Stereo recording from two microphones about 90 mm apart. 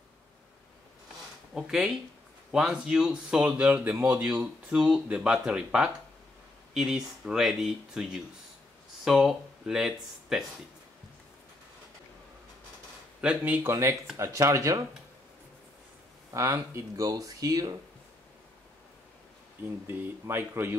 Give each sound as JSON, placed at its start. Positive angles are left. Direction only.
{"t": 1.5, "sound": "speech", "side_deg": -5}
{"t": 13.2, "sound": "speech", "side_deg": -15}
{"t": 13.7, "sound": "speech", "side_deg": -30}
{"t": 16.3, "sound": "speech", "side_deg": -35}
{"t": 19.9, "sound": "speech", "side_deg": -25}